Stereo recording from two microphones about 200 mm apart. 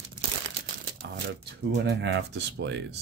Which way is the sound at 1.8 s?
60° right (ahead or behind).